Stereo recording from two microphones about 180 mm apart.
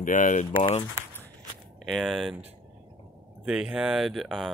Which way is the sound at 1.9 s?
Centre (ahead or behind).